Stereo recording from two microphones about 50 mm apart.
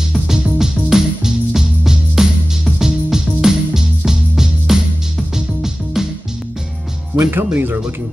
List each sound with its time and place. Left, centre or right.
0.1 s music: centre
7.2 s speech: right